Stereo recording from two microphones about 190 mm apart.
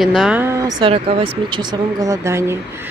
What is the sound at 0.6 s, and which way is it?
Speech, 25° right (ahead or behind).